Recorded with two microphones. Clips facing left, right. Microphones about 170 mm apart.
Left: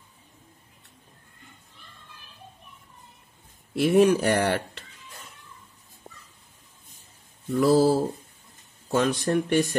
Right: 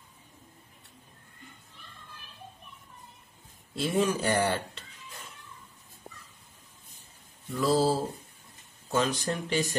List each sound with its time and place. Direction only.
3.7 s speech: 65° left (ahead or behind)
7.6 s speech: 60° left (ahead or behind)